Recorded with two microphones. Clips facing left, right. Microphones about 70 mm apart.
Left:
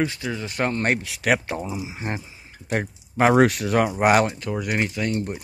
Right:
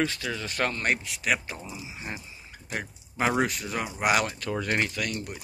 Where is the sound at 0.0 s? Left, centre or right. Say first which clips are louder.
Left 3 dB; centre.